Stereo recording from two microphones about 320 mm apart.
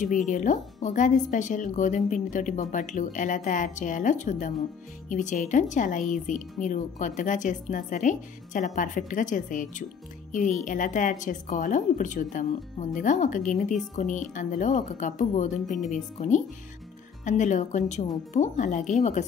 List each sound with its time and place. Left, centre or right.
0.0 s a woman's voice: left